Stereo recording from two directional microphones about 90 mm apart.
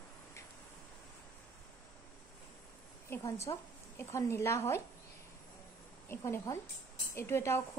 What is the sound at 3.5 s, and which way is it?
Speech, 45° left (ahead or behind).